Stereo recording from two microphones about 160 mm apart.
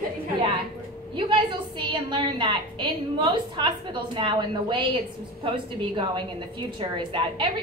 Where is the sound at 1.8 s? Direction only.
30° right (ahead or behind).